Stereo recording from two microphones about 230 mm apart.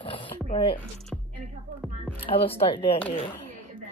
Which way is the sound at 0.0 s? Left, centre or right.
Left.